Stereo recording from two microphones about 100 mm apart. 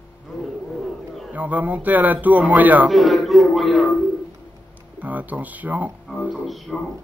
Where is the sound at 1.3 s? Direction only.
15° right (ahead or behind).